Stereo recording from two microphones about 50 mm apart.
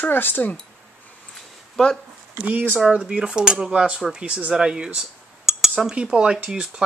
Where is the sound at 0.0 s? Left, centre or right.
Left.